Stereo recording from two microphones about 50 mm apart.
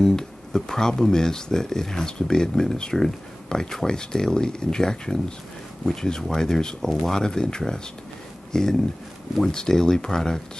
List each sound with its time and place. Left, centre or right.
0.0 s speech: centre